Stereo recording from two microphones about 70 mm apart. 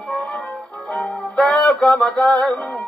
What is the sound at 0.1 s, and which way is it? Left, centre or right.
Music, centre.